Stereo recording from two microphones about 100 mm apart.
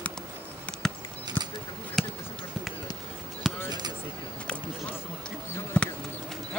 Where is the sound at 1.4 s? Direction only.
15° left (ahead or behind).